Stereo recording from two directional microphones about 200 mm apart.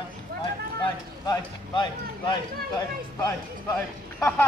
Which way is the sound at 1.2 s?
20° left (ahead or behind).